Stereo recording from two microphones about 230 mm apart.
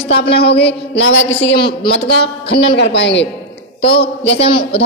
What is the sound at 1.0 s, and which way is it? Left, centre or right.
Speech, left.